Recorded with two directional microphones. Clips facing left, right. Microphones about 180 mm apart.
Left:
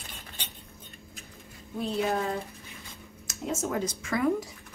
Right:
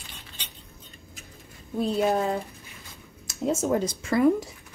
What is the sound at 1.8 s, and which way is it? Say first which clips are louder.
Speech: right 5 dB; 35° right (ahead or behind).